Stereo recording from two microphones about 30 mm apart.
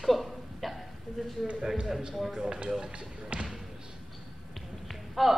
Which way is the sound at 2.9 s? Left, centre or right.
Right.